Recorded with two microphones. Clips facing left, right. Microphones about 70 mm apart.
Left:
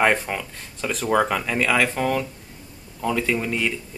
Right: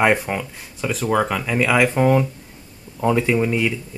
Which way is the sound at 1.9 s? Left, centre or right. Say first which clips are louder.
Right 6 dB; centre.